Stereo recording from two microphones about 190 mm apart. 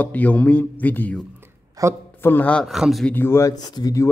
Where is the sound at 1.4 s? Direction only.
15° right (ahead or behind).